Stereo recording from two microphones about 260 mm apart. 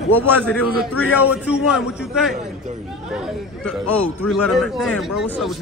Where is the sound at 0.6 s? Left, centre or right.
Left.